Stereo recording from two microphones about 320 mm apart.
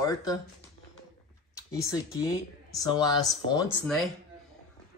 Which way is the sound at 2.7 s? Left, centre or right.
Centre.